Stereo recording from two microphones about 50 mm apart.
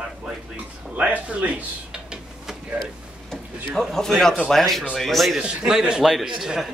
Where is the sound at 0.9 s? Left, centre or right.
Right.